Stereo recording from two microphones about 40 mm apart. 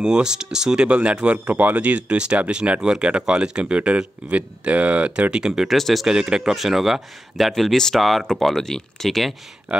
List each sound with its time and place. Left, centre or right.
0.0 s speech: centre
0.8 s speech: right
1.5 s speech: right
5.3 s speech: centre
5.7 s speech: centre
6.0 s speech: centre
6.5 s speech: centre